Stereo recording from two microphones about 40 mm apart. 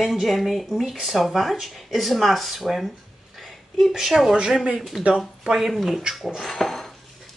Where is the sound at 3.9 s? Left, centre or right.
Centre.